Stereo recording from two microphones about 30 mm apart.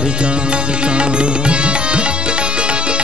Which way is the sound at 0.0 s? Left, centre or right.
Right.